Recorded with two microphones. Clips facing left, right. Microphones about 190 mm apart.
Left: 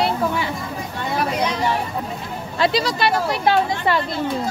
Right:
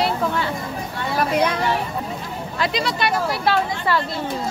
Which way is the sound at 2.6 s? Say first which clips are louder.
Left 4 dB; 35° left (ahead or behind).